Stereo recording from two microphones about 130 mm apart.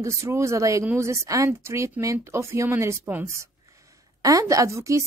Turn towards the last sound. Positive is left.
turn(degrees=-25)  # may be behind; listen again after turning